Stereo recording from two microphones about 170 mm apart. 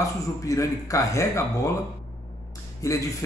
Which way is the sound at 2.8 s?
20° left (ahead or behind).